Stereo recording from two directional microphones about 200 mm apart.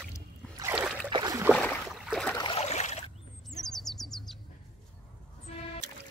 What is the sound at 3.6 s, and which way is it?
Bird, centre (ahead or behind).